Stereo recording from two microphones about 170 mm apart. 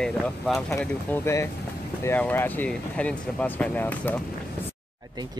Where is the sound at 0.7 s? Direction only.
15° left (ahead or behind).